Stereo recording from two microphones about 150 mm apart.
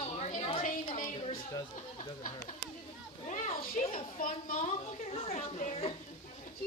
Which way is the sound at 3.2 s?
50° left (ahead or behind).